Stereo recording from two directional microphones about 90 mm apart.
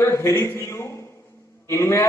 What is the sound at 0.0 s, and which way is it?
A man's voice, 30° left (ahead or behind).